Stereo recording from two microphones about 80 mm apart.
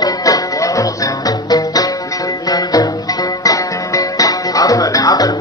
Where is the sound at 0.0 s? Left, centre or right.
Left.